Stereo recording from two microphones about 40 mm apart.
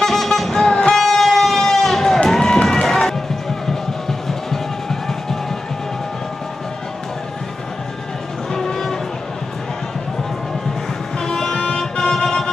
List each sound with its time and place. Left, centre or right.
0.0 s music: centre
8.5 s music: centre
11.1 s music: centre